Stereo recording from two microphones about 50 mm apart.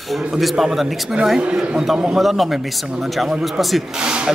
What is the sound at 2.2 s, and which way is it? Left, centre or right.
Speech, centre.